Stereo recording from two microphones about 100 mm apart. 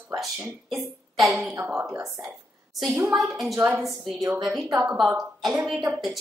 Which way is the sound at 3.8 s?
Centre (ahead or behind).